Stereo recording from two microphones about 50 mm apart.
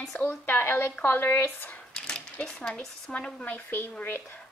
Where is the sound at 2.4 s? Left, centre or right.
Centre.